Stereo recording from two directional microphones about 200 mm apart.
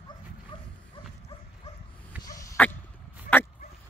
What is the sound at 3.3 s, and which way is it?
Dog, 45° left (ahead or behind).